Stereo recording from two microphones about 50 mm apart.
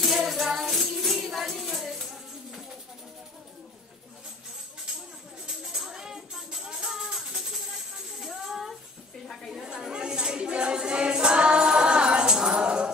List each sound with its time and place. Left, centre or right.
0.0 s music: centre
5.6 s music: centre